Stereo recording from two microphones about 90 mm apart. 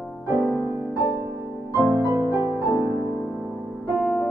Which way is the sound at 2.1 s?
35° right (ahead or behind).